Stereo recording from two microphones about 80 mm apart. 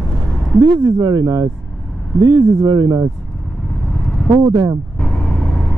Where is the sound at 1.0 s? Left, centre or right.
Right.